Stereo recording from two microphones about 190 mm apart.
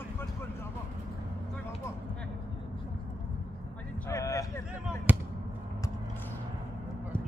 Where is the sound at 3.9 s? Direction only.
15° left (ahead or behind).